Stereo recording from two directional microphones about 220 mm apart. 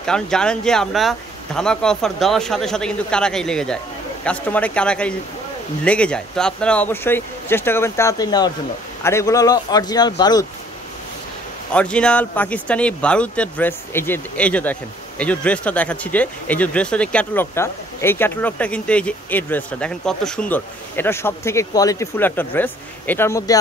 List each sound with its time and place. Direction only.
0.0 s speech: 5° left (ahead or behind)
11.7 s speech: 5° left (ahead or behind)